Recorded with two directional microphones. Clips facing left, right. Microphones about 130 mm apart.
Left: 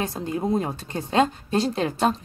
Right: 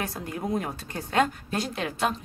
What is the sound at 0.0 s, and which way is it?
A woman's voice, 25° left (ahead or behind).